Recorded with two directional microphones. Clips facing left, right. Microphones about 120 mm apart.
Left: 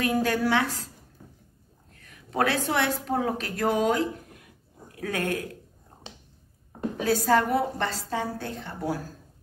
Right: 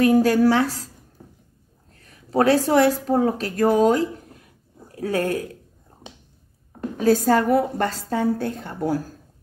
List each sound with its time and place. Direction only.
0.0 s a woman's voice: 40° right (ahead or behind)
7.0 s a woman's voice: 40° right (ahead or behind)